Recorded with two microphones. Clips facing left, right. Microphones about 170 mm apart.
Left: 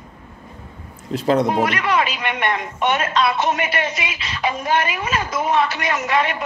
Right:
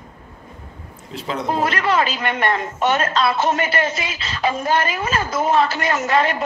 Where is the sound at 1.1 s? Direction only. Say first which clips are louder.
Left 9 dB; 45° left (ahead or behind).